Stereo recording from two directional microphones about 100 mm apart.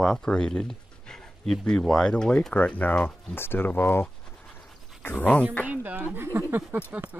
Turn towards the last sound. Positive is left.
turn(degrees=-15)  # may be behind; listen again after turning